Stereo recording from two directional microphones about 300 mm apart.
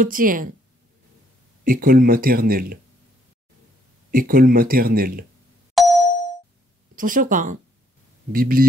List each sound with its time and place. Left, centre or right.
0.0 s speech: right
1.6 s speech: right
4.1 s speech: right
5.8 s ding: centre
7.0 s speech: right